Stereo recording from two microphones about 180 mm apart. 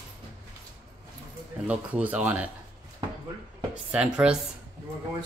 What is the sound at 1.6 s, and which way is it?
Speech, 5° right (ahead or behind).